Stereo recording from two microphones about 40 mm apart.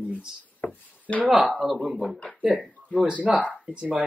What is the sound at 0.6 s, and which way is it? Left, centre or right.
Wood, left.